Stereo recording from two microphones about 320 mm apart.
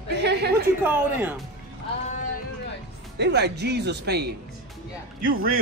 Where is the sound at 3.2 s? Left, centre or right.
Right.